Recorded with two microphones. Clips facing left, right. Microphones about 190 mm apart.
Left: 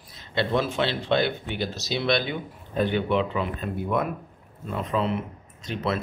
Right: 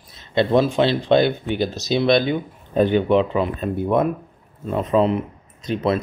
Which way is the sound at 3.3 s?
35° right (ahead or behind).